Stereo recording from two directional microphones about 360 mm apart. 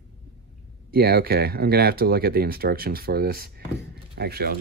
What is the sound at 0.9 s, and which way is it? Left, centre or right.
Speech, right.